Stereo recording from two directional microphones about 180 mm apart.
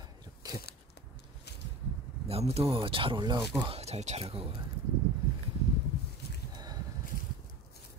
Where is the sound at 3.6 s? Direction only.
35° right (ahead or behind).